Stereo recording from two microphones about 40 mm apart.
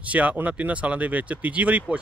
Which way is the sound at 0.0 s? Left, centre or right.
Right.